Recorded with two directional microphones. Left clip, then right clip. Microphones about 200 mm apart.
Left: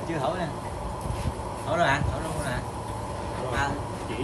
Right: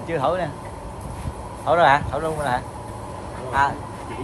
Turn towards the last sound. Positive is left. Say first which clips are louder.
# right 8 dB
turn(degrees=0)  # may be behind; listen again after turning